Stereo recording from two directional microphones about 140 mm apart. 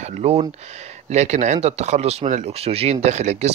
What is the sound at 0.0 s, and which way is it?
Speech, 50° right (ahead or behind).